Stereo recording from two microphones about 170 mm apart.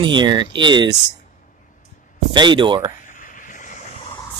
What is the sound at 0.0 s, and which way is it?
Speech, 25° right (ahead or behind).